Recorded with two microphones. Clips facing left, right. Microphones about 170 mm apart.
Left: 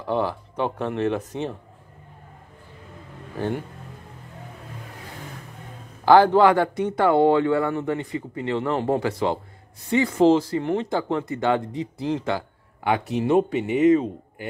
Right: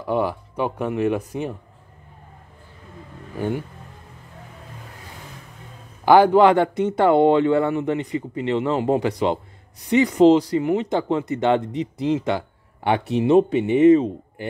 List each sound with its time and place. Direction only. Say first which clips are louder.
0.0 s speech: right 2 dB; 10° right (ahead or behind)
3.3 s speech: right 2 dB; 10° right (ahead or behind)
6.0 s speech: right 2 dB; 15° right (ahead or behind)